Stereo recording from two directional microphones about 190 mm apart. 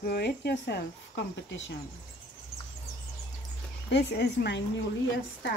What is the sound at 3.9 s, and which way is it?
Speech, 65° left (ahead or behind).